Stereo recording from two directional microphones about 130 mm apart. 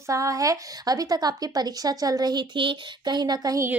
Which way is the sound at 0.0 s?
25° right (ahead or behind).